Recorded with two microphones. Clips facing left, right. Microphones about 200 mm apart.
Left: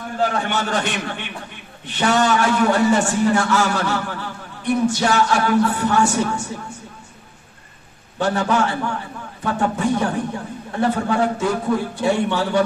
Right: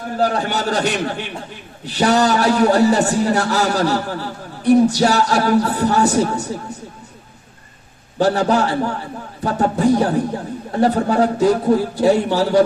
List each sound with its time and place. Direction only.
0.2 s a man's voice: 35° right (ahead or behind)
8.2 s a man's voice: 35° right (ahead or behind)